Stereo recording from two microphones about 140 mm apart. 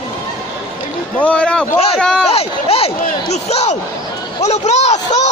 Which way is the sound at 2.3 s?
45° left (ahead or behind).